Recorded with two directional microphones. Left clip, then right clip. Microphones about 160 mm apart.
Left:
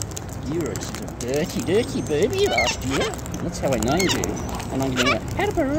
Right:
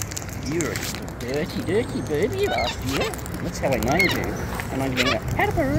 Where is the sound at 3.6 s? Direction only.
20° left (ahead or behind).